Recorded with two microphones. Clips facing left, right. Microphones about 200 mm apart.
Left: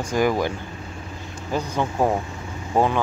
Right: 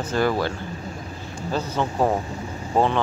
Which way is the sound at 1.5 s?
15° left (ahead or behind).